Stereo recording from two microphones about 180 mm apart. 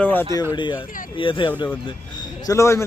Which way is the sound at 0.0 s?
10° left (ahead or behind).